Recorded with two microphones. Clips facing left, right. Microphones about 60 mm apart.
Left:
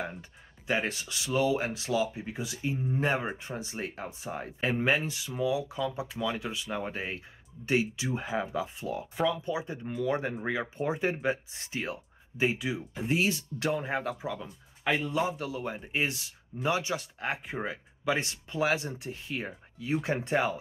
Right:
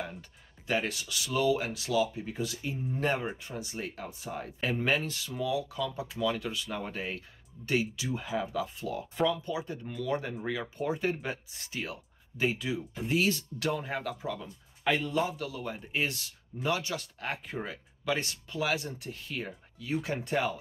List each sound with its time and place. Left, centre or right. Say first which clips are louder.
0.0 s speech: left 2 dB; left